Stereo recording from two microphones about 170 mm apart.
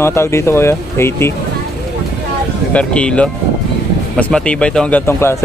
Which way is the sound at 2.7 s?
5° left (ahead or behind).